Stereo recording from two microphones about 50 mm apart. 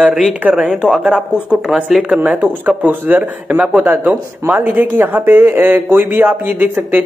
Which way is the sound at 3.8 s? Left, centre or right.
Right.